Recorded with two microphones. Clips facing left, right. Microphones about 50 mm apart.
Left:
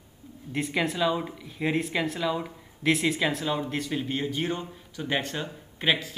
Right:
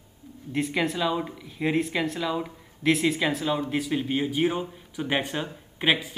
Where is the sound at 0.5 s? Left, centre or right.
Centre.